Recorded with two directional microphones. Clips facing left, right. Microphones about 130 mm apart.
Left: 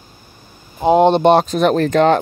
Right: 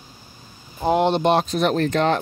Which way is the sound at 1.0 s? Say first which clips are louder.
Left 7 dB; 60° left (ahead or behind).